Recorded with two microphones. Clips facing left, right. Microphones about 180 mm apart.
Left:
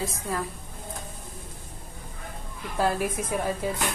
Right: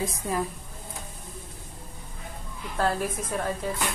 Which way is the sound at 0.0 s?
15° right (ahead or behind).